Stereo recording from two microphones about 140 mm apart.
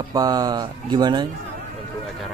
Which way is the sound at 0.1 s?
25° right (ahead or behind).